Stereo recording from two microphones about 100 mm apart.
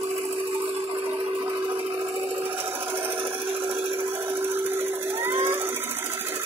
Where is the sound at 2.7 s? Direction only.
20° right (ahead or behind).